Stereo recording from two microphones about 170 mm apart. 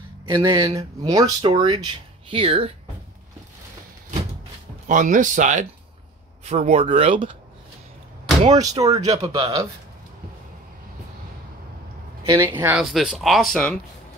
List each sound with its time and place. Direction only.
0.3 s speech: 20° right (ahead or behind)
4.8 s speech: 50° right (ahead or behind); by 7.3 s 30° right (ahead or behind)
8.5 s speech: 20° right (ahead or behind)
12.3 s speech: 15° right (ahead or behind)
12.9 s speech: centre (ahead or behind)